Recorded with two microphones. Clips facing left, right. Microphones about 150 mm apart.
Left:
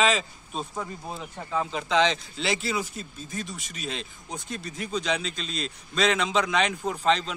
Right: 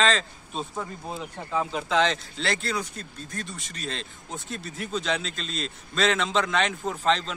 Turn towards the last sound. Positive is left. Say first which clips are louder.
# left 1 dB
turn(degrees=0)  # may be behind; listen again after turning